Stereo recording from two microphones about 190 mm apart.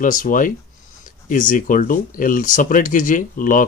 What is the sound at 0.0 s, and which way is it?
Speech, 45° left (ahead or behind).